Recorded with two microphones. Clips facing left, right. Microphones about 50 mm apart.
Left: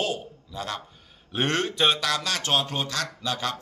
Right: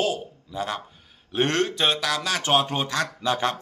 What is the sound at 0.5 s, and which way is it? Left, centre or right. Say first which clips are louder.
Speech: right 4 dB; centre.